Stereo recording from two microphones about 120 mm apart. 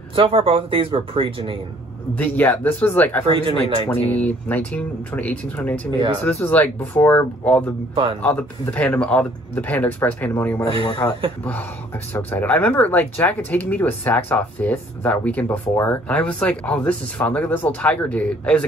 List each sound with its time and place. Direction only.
0.1 s speech: 50° right (ahead or behind)
2.1 s speech: 15° left (ahead or behind)
3.3 s speech: 45° right (ahead or behind)
3.9 s speech: 15° left (ahead or behind)
5.9 s speech: 40° right (ahead or behind)
6.2 s speech: 15° left (ahead or behind)
7.9 s speech: 45° right (ahead or behind)
8.2 s speech: 10° left (ahead or behind)
10.8 s a man's voice: 45° left (ahead or behind)
12.3 s speech: 15° left (ahead or behind)
15.7 s speech: 25° left (ahead or behind)
16.1 s speech: 10° left (ahead or behind)